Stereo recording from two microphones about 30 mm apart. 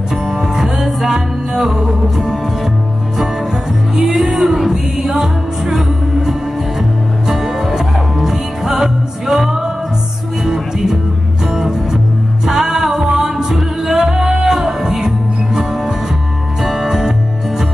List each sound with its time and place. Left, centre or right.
0.3 s music: centre
3.9 s music: centre
4.6 s music: centre
5.7 s music: right
12.4 s music: centre
16.6 s music: centre